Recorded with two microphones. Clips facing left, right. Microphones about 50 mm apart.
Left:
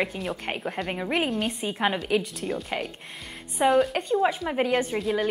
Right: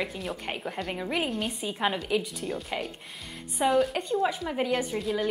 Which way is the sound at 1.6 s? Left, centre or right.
Left.